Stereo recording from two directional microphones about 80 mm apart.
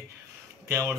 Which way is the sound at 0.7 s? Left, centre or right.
Right.